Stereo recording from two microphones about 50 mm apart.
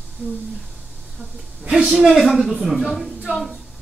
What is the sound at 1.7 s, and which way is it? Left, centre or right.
A woman's voice, centre.